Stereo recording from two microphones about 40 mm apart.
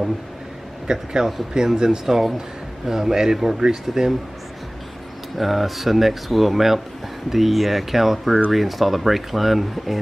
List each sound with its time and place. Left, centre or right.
0.8 s speech: centre
5.4 s speech: centre